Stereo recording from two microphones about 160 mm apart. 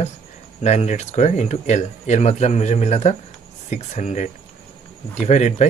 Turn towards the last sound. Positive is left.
turn(degrees=45)  # may be behind; listen again after turning